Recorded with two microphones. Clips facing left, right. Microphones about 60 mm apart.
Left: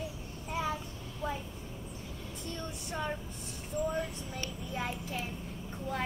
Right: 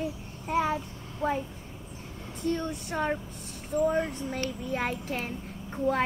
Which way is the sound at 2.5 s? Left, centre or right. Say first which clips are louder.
Right 7 dB; right.